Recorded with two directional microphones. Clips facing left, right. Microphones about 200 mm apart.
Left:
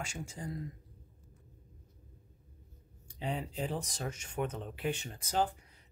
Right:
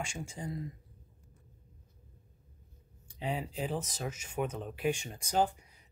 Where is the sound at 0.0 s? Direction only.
10° right (ahead or behind).